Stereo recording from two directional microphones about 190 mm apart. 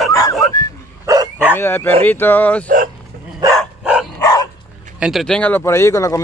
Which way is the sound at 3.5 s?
5° right (ahead or behind).